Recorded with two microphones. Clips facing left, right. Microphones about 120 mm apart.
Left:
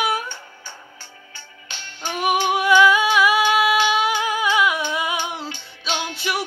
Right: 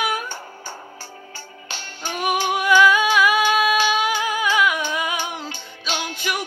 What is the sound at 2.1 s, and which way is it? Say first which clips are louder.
Humming: left 2 dB; 20° left (ahead or behind).